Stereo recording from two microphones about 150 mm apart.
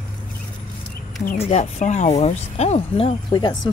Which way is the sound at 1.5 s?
50° left (ahead or behind).